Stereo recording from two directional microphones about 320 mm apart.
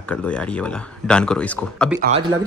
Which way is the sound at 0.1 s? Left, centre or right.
Centre.